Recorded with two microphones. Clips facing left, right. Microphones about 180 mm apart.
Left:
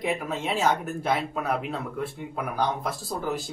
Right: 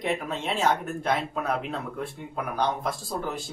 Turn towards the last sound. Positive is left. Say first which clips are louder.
# left 2 dB
turn(degrees=5)  # may be behind; listen again after turning